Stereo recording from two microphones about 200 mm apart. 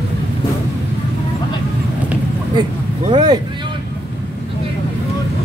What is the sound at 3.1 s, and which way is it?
Speech, 20° right (ahead or behind).